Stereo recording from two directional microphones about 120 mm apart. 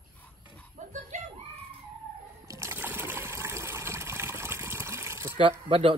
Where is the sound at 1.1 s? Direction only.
85° right.